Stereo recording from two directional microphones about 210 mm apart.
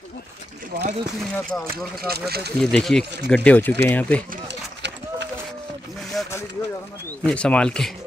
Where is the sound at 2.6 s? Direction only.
5° left (ahead or behind).